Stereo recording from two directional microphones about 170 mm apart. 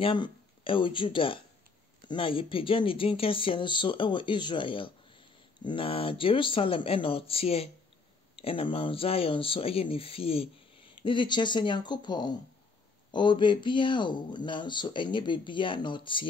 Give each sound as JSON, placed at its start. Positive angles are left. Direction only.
{"t": 0.0, "sound": "speech", "side_deg": 30}